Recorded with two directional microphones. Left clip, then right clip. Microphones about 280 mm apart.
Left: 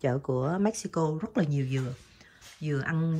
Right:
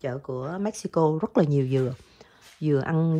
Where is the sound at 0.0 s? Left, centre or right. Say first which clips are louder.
Left 2 dB; centre.